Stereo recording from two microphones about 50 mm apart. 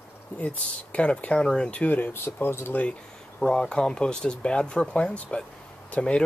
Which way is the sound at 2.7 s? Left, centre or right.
Left.